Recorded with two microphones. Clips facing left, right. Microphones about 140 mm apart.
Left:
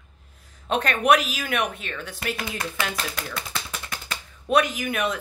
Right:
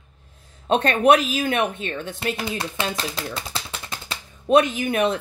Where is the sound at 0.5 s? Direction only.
30° right (ahead or behind).